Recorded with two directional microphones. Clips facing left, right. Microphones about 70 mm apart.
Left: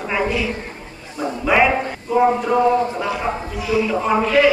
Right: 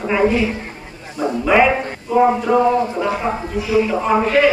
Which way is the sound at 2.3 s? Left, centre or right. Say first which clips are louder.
Right 2 dB; centre.